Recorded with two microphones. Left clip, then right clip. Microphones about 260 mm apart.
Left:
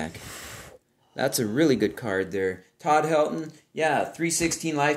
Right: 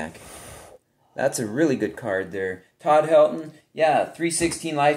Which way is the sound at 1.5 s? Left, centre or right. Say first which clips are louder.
Even; left.